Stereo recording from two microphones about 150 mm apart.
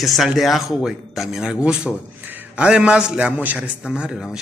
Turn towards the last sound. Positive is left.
turn(degrees=-5)  # may be behind; listen again after turning